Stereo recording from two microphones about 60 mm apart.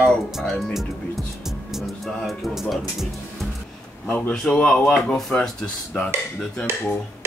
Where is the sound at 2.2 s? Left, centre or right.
Centre.